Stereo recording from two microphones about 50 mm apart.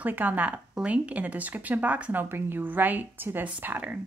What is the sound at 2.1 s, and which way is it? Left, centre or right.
Speech, right.